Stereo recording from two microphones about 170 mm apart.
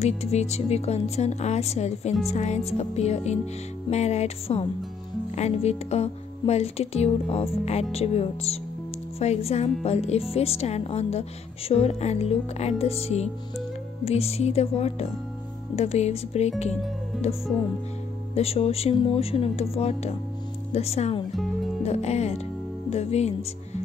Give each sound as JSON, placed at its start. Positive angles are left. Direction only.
{"t": 0.0, "sound": "speech", "side_deg": 40}
{"t": 17.1, "sound": "speech", "side_deg": 0}
{"t": 18.3, "sound": "speech", "side_deg": 35}
{"t": 22.8, "sound": "music", "side_deg": 40}